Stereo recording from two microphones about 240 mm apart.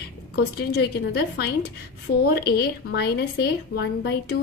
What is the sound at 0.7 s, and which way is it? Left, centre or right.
A woman's voice, left.